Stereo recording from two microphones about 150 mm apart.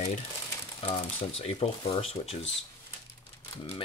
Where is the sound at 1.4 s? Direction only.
45° left (ahead or behind).